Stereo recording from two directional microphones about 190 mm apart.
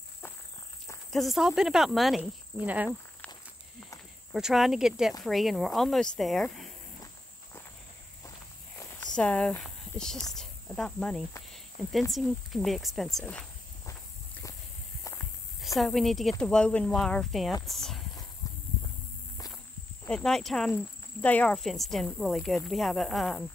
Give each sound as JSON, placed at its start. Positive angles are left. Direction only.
{"t": 1.1, "sound": "speech", "side_deg": 0}
{"t": 4.3, "sound": "speech", "side_deg": 0}
{"t": 9.1, "sound": "speech", "side_deg": 5}
{"t": 15.6, "sound": "speech", "side_deg": 0}
{"t": 18.4, "sound": "walk", "side_deg": 15}
{"t": 20.1, "sound": "speech", "side_deg": 5}